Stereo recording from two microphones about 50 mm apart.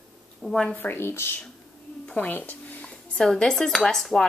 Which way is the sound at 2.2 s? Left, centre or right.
Left.